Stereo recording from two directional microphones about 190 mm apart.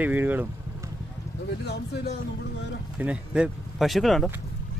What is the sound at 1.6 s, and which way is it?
Speech, 60° left (ahead or behind).